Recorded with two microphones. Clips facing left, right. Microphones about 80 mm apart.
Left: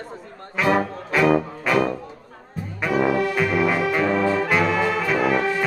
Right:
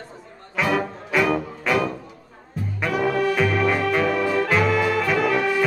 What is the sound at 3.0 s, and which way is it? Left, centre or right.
Music, centre.